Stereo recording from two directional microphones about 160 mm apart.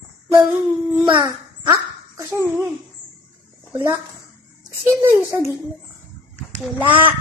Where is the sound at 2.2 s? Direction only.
15° right (ahead or behind).